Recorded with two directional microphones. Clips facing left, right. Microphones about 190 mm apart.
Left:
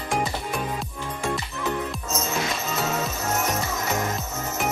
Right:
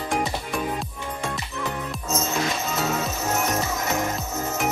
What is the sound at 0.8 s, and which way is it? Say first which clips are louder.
Music: even; centre (ahead or behind).